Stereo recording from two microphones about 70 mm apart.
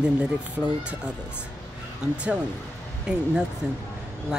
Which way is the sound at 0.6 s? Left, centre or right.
Centre.